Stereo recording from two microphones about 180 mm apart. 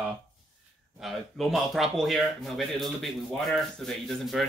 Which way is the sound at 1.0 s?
Centre (ahead or behind).